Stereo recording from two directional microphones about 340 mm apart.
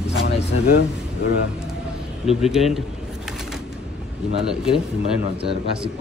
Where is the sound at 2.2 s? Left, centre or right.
Centre.